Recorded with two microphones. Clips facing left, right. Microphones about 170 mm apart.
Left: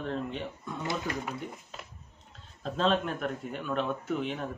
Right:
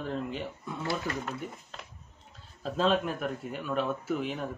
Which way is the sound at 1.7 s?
5° left (ahead or behind).